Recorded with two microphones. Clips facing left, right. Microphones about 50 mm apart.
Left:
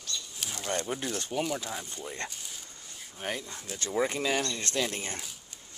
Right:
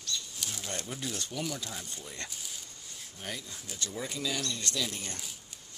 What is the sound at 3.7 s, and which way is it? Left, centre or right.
Speech, left.